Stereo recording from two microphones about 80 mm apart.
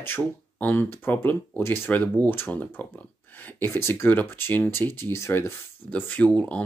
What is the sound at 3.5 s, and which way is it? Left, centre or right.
Speech, left.